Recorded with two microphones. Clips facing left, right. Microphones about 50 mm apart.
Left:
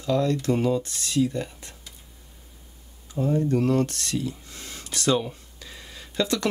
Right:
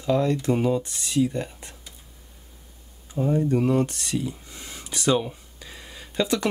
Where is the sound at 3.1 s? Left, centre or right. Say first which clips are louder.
Right 1 dB; centre.